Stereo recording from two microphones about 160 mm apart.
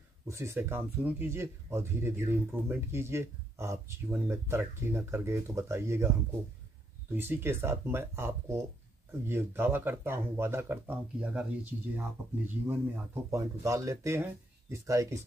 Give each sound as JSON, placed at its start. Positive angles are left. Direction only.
{"t": 0.3, "sound": "speech", "side_deg": -15}